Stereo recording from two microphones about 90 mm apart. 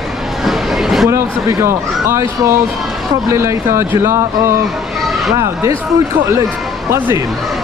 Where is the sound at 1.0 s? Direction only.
30° right (ahead or behind).